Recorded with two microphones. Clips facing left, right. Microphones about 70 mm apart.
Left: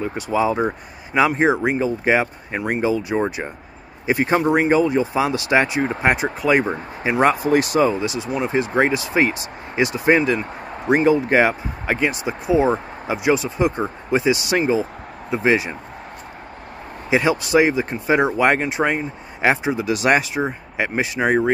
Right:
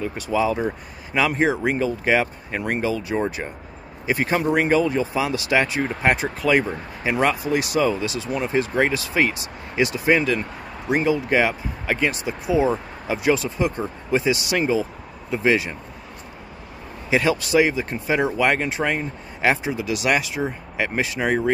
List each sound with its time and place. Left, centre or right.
0.0 s speech: left
8.0 s speech: centre
12.4 s speech: left
13.1 s speech: centre
17.1 s speech: left